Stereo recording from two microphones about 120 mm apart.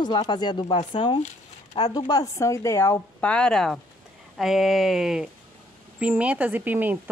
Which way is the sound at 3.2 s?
10° left (ahead or behind).